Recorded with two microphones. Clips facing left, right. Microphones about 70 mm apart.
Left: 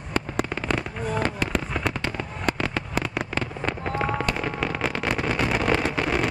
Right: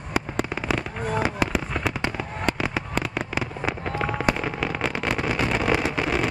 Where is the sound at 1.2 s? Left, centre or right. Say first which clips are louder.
Right 1 dB; centre.